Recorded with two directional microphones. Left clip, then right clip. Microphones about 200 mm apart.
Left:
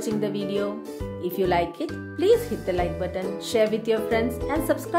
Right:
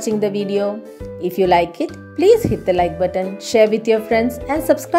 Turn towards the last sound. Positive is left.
turn(degrees=-25)  # may be behind; listen again after turning